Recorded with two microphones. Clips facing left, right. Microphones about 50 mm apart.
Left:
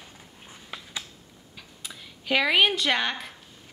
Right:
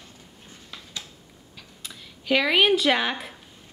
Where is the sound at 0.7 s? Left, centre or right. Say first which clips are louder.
Left 4 dB; centre.